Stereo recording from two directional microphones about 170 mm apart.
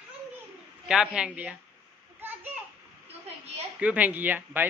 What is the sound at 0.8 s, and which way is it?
Speech, 5° right (ahead or behind).